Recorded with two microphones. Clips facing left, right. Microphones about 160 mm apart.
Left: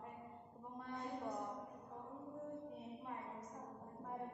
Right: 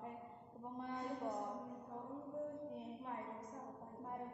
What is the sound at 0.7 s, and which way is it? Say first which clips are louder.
Speech: right 2 dB; 20° right (ahead or behind).